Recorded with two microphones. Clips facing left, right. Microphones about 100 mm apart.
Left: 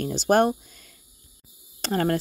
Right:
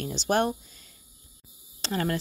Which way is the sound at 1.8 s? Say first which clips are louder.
Left 5 dB; 40° left (ahead or behind).